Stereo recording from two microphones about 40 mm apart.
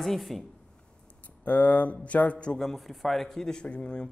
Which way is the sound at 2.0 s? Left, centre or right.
Left.